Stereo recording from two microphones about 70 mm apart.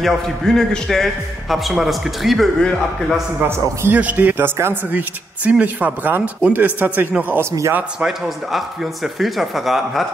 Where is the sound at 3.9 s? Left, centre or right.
Right.